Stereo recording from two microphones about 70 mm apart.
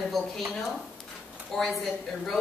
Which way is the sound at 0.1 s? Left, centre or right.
Centre.